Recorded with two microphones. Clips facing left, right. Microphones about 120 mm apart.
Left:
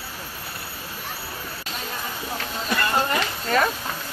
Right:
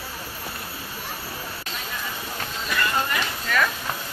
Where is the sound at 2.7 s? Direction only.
30° left (ahead or behind).